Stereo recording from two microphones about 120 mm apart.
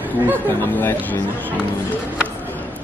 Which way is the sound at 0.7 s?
15° left (ahead or behind).